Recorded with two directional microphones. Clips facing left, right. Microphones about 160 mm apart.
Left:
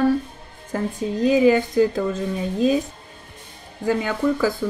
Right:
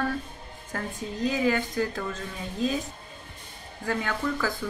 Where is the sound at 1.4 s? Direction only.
15° left (ahead or behind).